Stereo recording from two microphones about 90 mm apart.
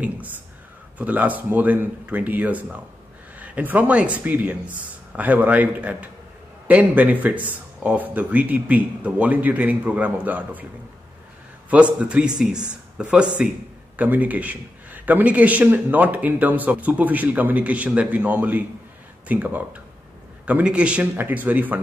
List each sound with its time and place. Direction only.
0.9 s a man's voice: 15° right (ahead or behind)
11.7 s a man's voice: 15° right (ahead or behind)